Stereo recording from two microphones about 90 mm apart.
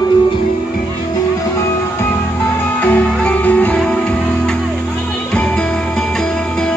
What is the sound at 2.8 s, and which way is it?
Music, 15° left (ahead or behind).